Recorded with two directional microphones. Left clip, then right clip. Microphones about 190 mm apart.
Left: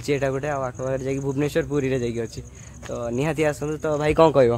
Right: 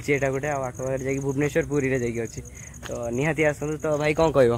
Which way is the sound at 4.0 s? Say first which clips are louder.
Left 6 dB; 30° left (ahead or behind).